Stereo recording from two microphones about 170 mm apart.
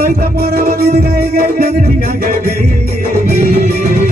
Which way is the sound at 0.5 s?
55° right (ahead or behind).